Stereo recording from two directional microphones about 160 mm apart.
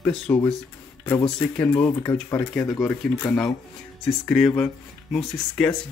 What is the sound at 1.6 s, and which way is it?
Speech, 10° left (ahead or behind).